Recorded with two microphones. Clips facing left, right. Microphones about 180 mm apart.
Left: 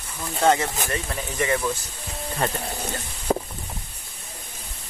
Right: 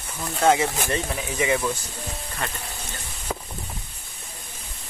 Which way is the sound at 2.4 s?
40° left (ahead or behind).